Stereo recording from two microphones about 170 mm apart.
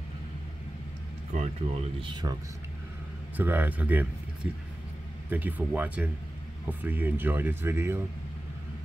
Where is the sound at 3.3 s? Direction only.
10° right (ahead or behind).